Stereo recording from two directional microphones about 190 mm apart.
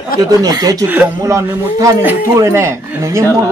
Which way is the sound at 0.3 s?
20° right (ahead or behind).